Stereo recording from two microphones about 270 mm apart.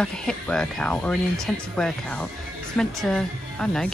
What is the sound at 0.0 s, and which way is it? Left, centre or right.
Speech, centre.